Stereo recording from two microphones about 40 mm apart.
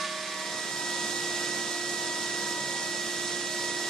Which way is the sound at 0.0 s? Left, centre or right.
Centre.